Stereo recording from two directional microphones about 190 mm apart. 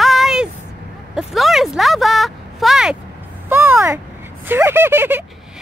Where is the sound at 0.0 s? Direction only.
Centre (ahead or behind).